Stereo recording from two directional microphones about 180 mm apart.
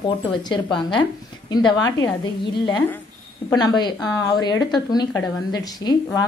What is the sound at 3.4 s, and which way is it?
A woman's voice, 25° left (ahead or behind).